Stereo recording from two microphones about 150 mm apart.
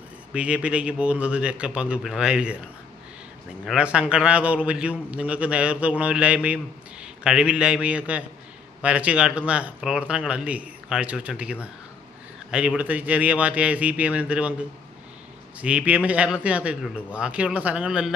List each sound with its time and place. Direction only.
0.3 s a man's voice: 5° right (ahead or behind)
3.6 s a man's voice: 5° right (ahead or behind)